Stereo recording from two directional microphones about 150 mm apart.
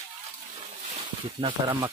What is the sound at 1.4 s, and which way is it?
Speech, 30° right (ahead or behind).